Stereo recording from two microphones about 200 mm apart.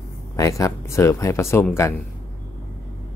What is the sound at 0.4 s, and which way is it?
Speech, 15° left (ahead or behind).